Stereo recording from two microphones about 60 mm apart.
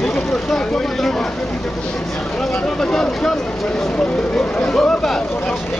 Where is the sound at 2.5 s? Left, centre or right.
Centre.